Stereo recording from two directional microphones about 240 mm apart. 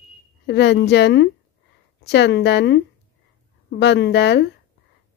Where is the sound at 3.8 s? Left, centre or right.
Left.